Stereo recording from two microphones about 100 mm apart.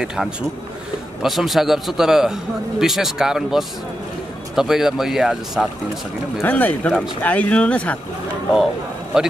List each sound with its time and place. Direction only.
0.0 s a man's voice: 5° right (ahead or behind)
6.4 s speech: 15° left (ahead or behind)
9.1 s speech: 5° right (ahead or behind)